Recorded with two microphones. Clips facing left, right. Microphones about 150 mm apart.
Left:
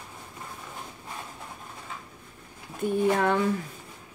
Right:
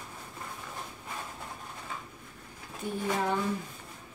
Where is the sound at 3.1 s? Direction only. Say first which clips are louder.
Left 5 dB; 70° left (ahead or behind).